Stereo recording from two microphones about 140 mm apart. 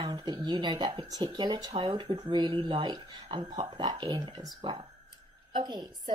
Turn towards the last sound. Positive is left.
turn(degrees=-30)  # may be behind; listen again after turning